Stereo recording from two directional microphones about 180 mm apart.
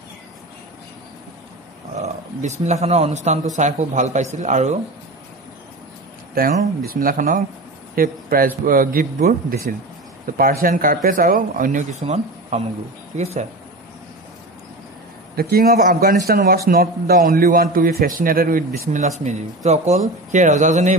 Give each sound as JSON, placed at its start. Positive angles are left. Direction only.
{"t": 2.0, "sound": "speech", "side_deg": -40}
{"t": 6.3, "sound": "a man's voice", "side_deg": -50}
{"t": 15.3, "sound": "a man's voice", "side_deg": -55}